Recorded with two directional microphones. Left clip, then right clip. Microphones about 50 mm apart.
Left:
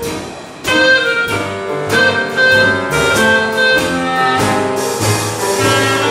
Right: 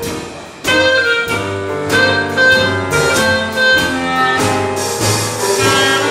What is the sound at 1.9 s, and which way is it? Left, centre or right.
Music, centre.